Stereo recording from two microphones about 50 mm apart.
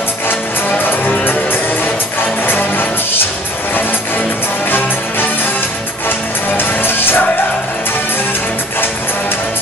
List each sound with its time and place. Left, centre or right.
0.7 s music: left
6.0 s music: left